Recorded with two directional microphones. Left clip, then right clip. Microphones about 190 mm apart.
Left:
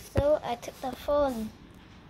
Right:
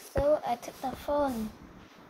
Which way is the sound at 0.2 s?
25° left (ahead or behind).